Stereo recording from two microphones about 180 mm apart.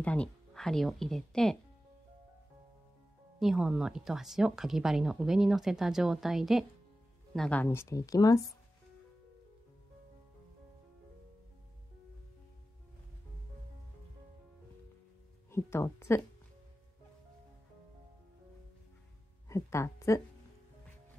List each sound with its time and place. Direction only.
0.0 s speech: 5° left (ahead or behind)
3.3 s speech: centre (ahead or behind); by 8.5 s 20° left (ahead or behind)
15.5 s speech: 15° left (ahead or behind)
19.5 s speech: 15° left (ahead or behind)